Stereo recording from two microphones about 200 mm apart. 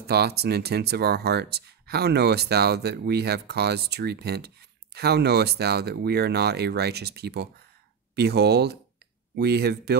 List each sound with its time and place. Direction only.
0.0 s speech: 55° right (ahead or behind)